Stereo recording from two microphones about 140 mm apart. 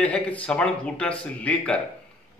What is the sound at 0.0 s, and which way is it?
Speech, 10° left (ahead or behind).